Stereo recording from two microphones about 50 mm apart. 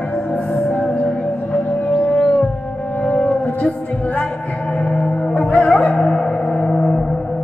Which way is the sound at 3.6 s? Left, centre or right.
Left.